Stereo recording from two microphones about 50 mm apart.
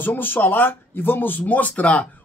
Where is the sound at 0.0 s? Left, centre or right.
Left.